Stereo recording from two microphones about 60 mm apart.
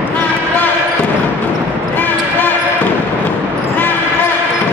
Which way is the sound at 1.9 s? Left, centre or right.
Left.